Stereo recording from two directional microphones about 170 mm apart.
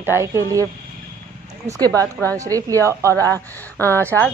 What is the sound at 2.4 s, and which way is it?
Speech, 20° right (ahead or behind).